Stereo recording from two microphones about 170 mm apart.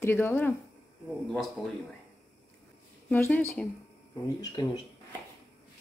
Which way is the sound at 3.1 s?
15° left (ahead or behind).